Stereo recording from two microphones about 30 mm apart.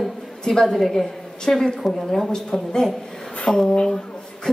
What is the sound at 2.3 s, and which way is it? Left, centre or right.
A woman's voice, left.